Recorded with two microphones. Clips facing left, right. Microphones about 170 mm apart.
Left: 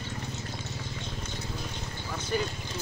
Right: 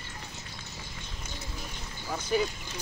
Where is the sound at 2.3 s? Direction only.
5° right (ahead or behind).